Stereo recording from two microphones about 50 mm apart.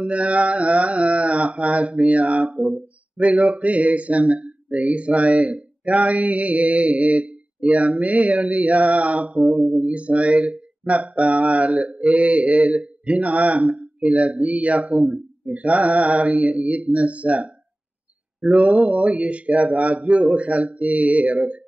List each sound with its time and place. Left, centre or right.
0.0 s speech: right